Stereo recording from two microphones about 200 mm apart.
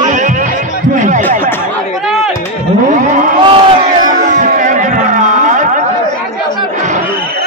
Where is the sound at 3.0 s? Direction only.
40° right (ahead or behind).